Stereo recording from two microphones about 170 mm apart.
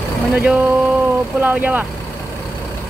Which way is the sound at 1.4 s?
10° right (ahead or behind).